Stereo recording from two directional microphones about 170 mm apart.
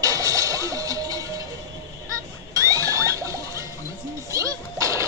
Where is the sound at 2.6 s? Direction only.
20° right (ahead or behind).